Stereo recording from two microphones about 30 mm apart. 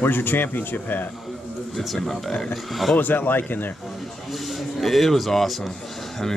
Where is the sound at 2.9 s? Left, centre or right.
Left.